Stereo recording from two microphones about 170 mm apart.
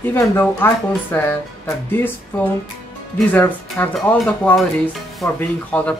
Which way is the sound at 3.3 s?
10° left (ahead or behind).